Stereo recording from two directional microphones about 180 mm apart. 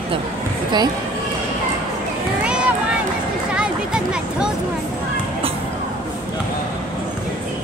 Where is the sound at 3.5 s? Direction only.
5° right (ahead or behind).